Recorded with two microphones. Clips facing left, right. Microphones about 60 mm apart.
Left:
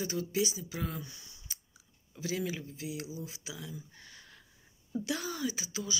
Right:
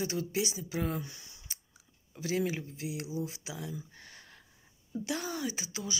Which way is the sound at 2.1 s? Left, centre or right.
Right.